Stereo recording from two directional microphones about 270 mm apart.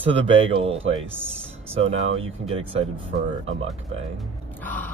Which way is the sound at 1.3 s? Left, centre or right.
Right.